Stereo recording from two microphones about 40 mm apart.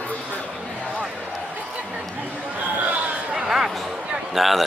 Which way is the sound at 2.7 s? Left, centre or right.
Right.